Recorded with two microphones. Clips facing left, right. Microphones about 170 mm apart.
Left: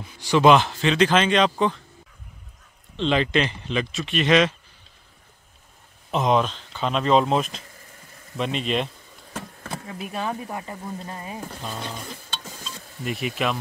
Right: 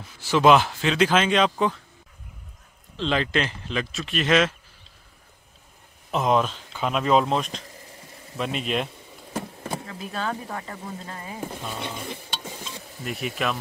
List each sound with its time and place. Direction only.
0.0 s speech: centre (ahead or behind)
3.0 s speech: centre (ahead or behind)
6.1 s speech: centre (ahead or behind)
8.4 s a sound: 5° right (ahead or behind)
9.8 s speech: 15° left (ahead or behind)
12.0 s stir: 25° right (ahead or behind)
13.0 s speech: centre (ahead or behind)